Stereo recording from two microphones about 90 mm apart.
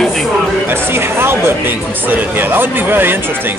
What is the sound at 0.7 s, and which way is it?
Speech, 25° right (ahead or behind).